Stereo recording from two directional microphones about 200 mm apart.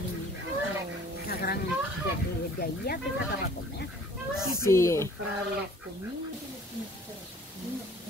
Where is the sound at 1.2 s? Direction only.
50° left (ahead or behind).